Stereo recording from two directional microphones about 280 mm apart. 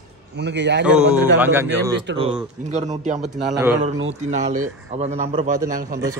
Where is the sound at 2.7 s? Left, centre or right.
Right.